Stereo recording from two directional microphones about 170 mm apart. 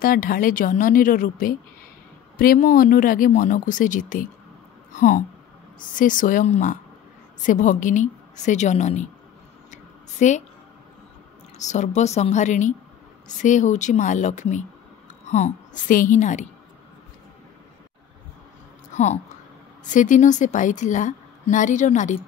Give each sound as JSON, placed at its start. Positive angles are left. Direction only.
{"t": 0.0, "sound": "a woman's voice", "side_deg": 55}
{"t": 4.9, "sound": "a sound", "side_deg": 45}
{"t": 5.9, "sound": "a woman's voice", "side_deg": 50}
{"t": 9.7, "sound": "a sound", "side_deg": 45}
{"t": 11.5, "sound": "a woman's voice", "side_deg": 45}
{"t": 19.9, "sound": "a woman's voice", "side_deg": 50}